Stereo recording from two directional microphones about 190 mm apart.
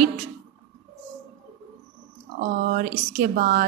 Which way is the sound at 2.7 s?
45° right (ahead or behind).